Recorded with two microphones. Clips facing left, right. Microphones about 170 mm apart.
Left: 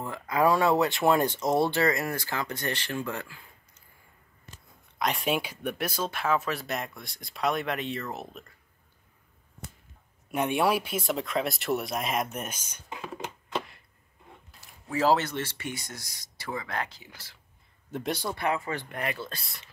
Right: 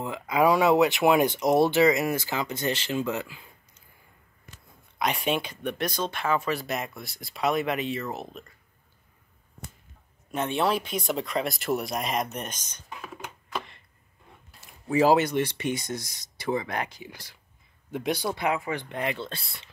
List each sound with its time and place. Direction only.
0.0 s speech: 15° right (ahead or behind)
4.9 s speech: centre (ahead or behind)
10.3 s speech: 10° left (ahead or behind)
14.9 s speech: 15° right (ahead or behind)
17.9 s speech: centre (ahead or behind)
18.2 s speech: 15° right (ahead or behind)